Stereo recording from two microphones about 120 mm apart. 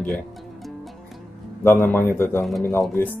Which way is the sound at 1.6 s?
20° left (ahead or behind).